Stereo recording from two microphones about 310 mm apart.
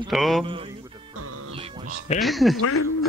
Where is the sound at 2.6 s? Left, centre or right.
Left.